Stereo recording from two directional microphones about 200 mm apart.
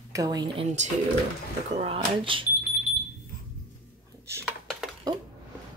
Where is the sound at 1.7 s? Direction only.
30° right (ahead or behind).